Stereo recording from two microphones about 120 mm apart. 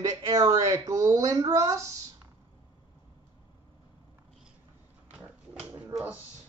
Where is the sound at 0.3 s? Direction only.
30° right (ahead or behind).